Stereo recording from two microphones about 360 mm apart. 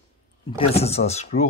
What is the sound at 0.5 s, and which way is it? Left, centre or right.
Speech, centre.